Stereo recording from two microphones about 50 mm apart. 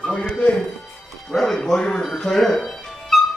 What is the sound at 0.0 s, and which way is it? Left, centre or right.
Music, left.